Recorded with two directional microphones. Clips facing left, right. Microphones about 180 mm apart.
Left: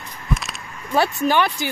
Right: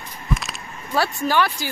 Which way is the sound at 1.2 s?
20° left (ahead or behind).